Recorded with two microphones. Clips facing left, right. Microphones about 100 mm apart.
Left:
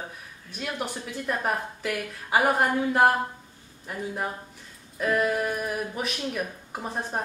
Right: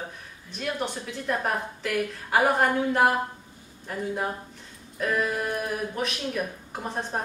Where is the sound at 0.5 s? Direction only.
5° left (ahead or behind).